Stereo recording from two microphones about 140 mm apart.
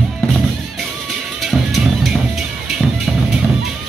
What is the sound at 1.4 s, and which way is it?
Music, centre (ahead or behind).